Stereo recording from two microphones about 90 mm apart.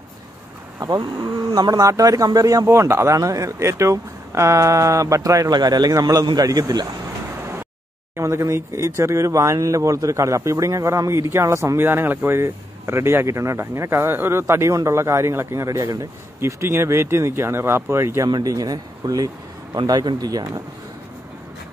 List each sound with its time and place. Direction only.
0.7 s speech: 45° right (ahead or behind)
8.2 s speech: 35° right (ahead or behind)
18.3 s speech: 40° right (ahead or behind)